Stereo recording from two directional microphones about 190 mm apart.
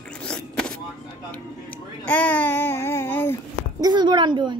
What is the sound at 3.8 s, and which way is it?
Speech, 20° right (ahead or behind).